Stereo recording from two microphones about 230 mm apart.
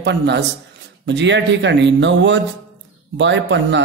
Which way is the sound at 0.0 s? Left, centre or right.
Right.